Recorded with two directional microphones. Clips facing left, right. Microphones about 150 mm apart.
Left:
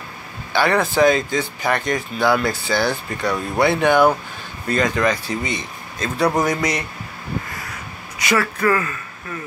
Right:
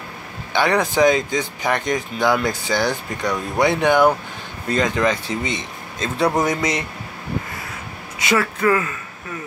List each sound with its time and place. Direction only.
0.5 s speech: 20° right (ahead or behind)
8.2 s speech: 20° right (ahead or behind)